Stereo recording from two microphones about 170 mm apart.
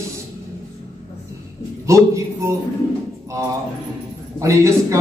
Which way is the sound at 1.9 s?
15° right (ahead or behind).